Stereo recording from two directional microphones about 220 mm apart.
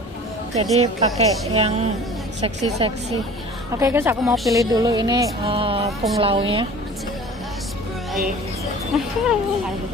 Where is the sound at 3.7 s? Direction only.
15° right (ahead or behind).